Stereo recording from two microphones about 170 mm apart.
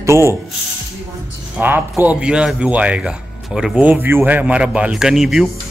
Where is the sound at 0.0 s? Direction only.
15° right (ahead or behind).